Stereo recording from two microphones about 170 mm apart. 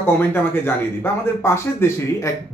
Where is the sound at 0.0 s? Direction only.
15° left (ahead or behind).